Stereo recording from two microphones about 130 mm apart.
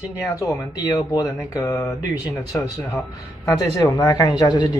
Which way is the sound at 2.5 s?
15° left (ahead or behind).